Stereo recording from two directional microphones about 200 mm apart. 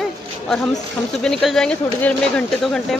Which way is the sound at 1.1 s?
5° left (ahead or behind).